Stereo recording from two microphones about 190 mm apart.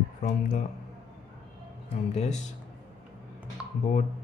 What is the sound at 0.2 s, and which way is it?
Speech, 40° left (ahead or behind).